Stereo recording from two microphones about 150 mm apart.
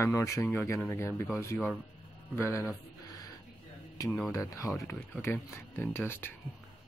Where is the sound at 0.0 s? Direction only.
20° left (ahead or behind).